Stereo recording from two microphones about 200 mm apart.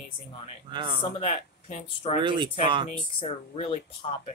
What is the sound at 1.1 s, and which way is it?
Speech, 30° left (ahead or behind).